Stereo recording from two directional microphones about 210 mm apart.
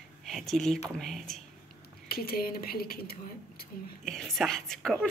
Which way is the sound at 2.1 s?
45° left (ahead or behind).